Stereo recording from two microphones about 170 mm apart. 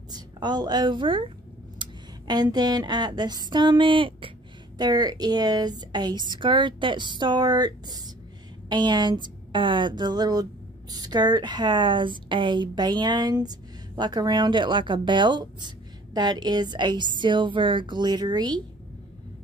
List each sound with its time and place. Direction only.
0.1 s a woman's voice: 25° right (ahead or behind)